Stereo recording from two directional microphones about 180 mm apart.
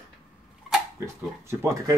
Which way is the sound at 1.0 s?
15° right (ahead or behind).